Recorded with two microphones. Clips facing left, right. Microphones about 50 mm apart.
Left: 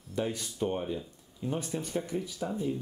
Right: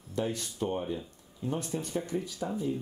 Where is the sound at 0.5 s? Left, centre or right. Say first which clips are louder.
Left 2 dB; centre.